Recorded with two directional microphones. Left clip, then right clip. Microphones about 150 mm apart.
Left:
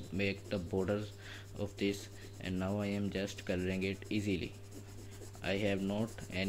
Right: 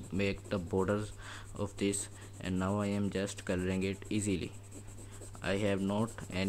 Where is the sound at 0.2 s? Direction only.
30° right (ahead or behind).